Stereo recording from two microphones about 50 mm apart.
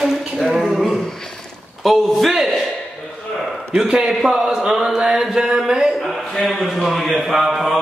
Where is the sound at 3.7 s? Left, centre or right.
Centre.